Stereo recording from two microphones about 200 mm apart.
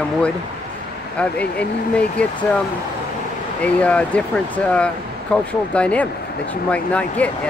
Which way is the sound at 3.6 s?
5° left (ahead or behind).